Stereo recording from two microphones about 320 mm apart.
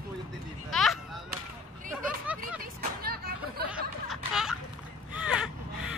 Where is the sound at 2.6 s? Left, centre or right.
Right.